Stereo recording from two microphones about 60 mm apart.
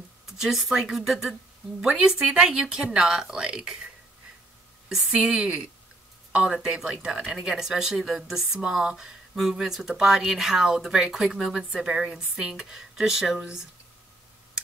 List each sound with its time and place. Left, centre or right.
0.4 s a woman's voice: centre
1.8 s speech: centre
4.8 s speech: centre